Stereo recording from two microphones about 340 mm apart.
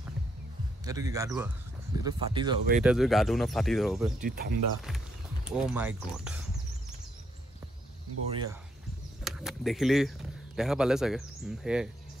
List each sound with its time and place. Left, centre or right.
0.8 s speech: centre
2.8 s speech: centre
4.2 s speech: right
5.5 s speech: centre
8.3 s speech: centre
9.2 s speech: centre